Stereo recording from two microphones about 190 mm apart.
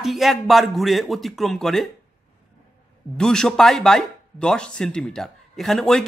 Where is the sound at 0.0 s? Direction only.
Centre (ahead or behind).